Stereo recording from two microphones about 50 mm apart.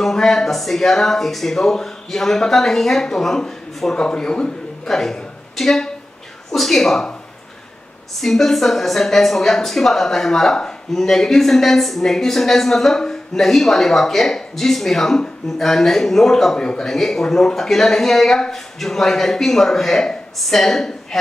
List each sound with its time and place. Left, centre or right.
0.0 s speech: centre
8.2 s speech: centre